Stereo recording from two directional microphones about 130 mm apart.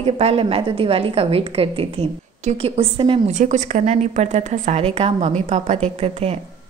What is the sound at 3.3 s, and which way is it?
A woman's voice, 70° right (ahead or behind).